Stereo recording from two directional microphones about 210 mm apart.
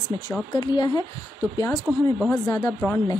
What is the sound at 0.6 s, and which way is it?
Speech, 20° left (ahead or behind).